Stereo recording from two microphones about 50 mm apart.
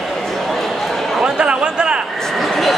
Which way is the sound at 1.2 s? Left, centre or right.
Centre.